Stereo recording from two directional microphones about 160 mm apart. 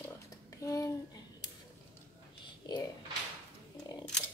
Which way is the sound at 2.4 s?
25° left (ahead or behind).